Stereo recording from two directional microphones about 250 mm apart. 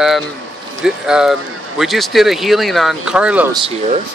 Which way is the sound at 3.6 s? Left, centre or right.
Right.